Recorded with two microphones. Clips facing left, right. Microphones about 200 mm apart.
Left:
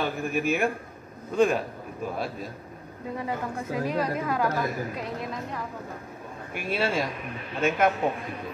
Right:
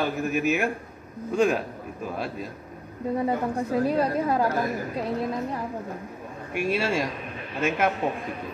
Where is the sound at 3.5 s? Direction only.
35° right (ahead or behind).